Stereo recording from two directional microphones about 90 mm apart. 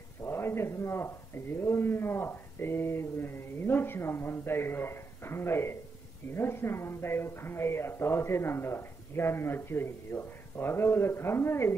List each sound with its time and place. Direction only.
0.2 s a man's voice: 25° left (ahead or behind)